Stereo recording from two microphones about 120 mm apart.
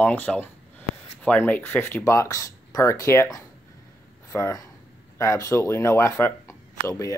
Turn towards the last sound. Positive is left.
turn(degrees=25)  # may be behind; listen again after turning